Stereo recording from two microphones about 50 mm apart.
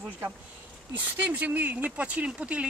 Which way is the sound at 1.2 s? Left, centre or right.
Right.